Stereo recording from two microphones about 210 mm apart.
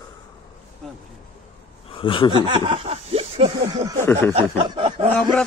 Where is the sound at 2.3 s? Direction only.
25° right (ahead or behind).